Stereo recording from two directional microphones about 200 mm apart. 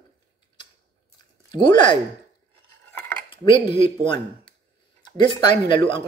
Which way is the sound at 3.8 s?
25° left (ahead or behind).